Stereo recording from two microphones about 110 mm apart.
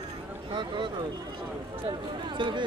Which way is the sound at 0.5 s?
45° right (ahead or behind).